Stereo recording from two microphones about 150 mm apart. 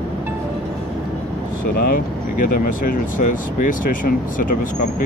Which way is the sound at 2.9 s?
65° left (ahead or behind).